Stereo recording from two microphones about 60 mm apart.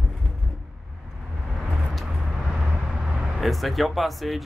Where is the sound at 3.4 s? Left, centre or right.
Centre.